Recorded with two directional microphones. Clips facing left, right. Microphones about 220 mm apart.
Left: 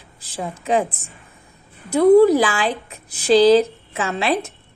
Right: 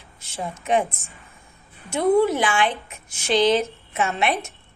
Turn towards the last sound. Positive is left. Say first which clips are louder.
# left 3 dB
turn(degrees=30)  # may be behind; listen again after turning